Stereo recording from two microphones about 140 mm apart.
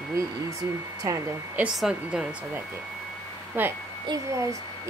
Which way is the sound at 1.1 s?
25° right (ahead or behind).